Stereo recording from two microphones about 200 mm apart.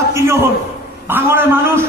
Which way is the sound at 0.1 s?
15° right (ahead or behind).